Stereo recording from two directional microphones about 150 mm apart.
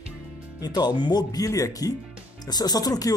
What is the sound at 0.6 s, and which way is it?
Speech, 25° left (ahead or behind).